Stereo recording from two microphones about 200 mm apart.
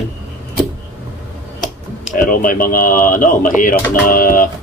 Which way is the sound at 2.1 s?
40° left (ahead or behind).